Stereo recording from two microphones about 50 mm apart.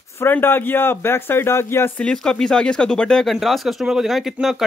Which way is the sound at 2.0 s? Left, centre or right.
Centre.